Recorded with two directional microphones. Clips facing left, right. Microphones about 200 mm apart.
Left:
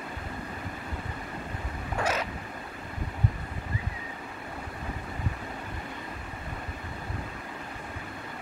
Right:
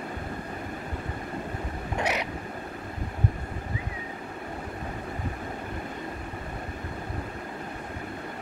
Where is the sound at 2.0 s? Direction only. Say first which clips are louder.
Even; 20° right (ahead or behind).